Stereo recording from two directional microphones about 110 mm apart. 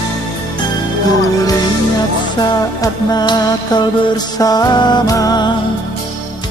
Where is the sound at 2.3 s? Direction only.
40° left (ahead or behind).